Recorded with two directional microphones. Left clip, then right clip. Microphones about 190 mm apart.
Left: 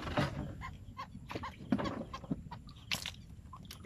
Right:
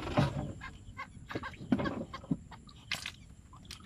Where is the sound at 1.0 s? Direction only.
15° left (ahead or behind).